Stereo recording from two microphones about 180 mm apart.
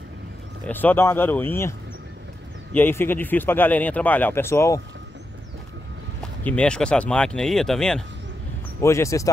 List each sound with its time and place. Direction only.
0.7 s speech: 10° left (ahead or behind)
6.4 s speech: 5° left (ahead or behind)
8.8 s speech: 15° left (ahead or behind)